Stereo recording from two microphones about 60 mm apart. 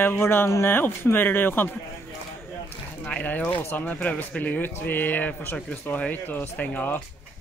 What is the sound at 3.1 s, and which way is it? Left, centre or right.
Speech, left.